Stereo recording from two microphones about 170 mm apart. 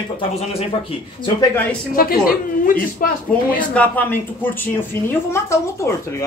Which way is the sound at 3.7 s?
10° left (ahead or behind).